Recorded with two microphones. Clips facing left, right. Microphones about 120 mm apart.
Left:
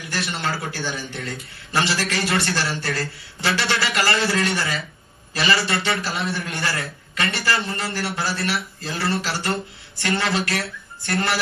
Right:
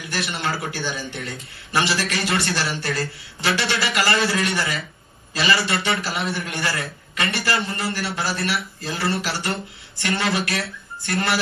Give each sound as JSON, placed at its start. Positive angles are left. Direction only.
{"t": 0.0, "sound": "a man's voice", "side_deg": -20}